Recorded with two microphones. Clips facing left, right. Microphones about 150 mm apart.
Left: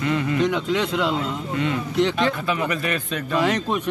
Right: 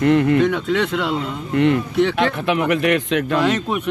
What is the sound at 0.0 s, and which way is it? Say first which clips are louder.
Speech: right 7 dB; 60° right (ahead or behind).